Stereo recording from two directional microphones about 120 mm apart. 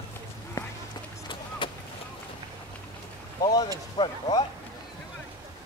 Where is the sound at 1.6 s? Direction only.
45° left (ahead or behind).